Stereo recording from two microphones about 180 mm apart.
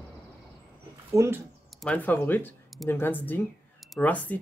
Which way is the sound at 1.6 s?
5° left (ahead or behind).